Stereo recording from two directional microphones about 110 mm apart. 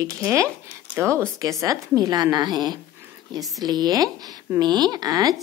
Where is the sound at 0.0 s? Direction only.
30° right (ahead or behind).